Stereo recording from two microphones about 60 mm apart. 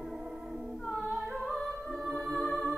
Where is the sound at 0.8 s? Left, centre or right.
Centre.